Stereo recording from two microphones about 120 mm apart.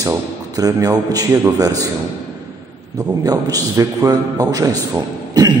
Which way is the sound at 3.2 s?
30° right (ahead or behind).